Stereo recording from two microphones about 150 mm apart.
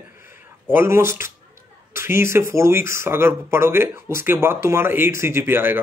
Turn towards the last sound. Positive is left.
turn(degrees=-15)  # may be behind; listen again after turning